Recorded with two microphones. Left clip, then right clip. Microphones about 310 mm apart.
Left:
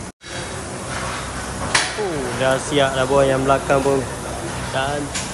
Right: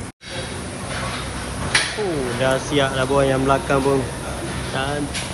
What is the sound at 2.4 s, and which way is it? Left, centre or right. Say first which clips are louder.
Speech: left 2 dB; centre.